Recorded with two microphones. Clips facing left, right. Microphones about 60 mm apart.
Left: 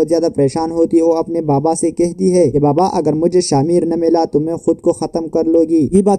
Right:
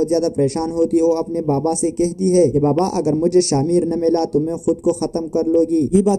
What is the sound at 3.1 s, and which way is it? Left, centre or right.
Speech, left.